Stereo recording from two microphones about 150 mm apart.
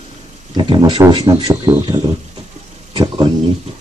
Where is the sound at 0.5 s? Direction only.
30° right (ahead or behind).